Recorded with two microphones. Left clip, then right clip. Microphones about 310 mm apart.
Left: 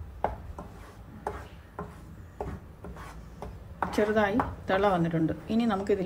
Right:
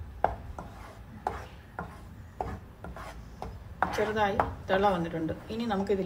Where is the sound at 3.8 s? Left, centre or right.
Left.